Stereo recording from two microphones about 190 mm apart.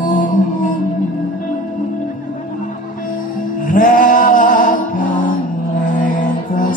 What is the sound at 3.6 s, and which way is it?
Music, 45° left (ahead or behind).